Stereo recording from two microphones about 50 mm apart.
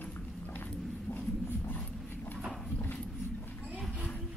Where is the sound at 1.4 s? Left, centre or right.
Left.